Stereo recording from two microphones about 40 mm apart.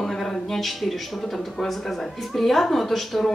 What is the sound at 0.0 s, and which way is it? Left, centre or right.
Speech, centre.